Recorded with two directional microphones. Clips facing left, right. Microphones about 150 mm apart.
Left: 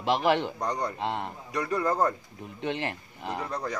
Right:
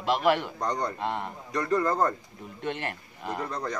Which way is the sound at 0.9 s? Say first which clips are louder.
Even; 20° left (ahead or behind).